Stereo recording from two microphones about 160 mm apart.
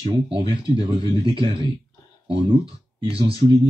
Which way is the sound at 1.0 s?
25° left (ahead or behind).